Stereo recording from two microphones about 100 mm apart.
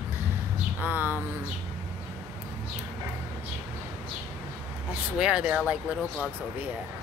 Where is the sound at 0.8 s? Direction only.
20° right (ahead or behind).